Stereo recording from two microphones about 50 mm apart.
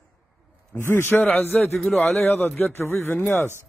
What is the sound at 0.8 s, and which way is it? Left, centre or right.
Speech, left.